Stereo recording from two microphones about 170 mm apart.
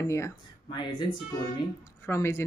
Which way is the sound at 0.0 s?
20° left (ahead or behind).